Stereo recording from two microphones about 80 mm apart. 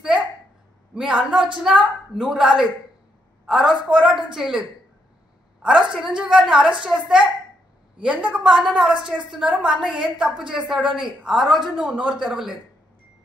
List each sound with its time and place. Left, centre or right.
0.9 s a woman's voice: centre
5.7 s a woman's voice: centre
8.0 s a woman's voice: centre
8.5 s a woman's voice: centre